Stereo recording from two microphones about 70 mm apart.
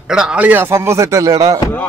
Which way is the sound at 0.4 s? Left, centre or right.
Right.